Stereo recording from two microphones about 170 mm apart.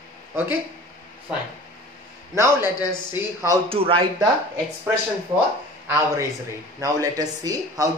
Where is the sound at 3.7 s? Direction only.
35° right (ahead or behind).